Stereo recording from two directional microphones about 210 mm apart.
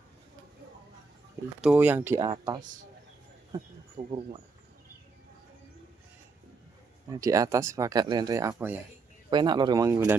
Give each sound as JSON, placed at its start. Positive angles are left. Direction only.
{"t": 1.6, "sound": "speech", "side_deg": -5}
{"t": 4.0, "sound": "speech", "side_deg": -20}
{"t": 7.1, "sound": "speech", "side_deg": -15}
{"t": 9.3, "sound": "speech", "side_deg": -20}